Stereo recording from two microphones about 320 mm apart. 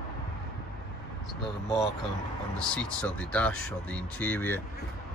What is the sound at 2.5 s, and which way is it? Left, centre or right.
Speech, centre.